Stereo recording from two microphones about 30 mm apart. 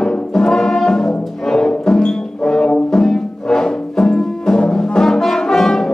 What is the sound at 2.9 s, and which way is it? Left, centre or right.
Music, centre.